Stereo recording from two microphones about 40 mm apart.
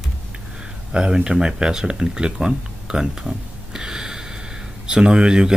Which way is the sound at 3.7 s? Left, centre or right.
Centre.